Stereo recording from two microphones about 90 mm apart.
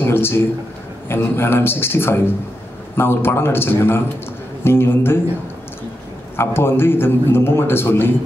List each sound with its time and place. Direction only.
0.0 s a man's voice: 25° left (ahead or behind)
6.3 s a man's voice: 25° left (ahead or behind)